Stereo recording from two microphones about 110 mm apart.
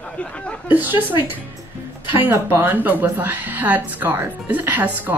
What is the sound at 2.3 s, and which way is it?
Speech, 20° right (ahead or behind).